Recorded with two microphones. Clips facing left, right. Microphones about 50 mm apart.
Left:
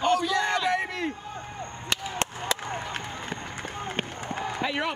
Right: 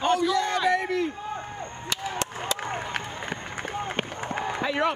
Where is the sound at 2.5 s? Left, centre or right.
Right.